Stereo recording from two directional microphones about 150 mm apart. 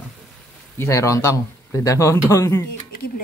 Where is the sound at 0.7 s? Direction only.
20° left (ahead or behind).